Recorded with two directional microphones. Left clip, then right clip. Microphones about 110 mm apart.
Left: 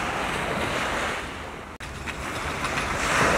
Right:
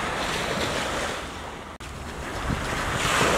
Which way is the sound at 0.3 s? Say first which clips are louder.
Even; 40° right (ahead or behind).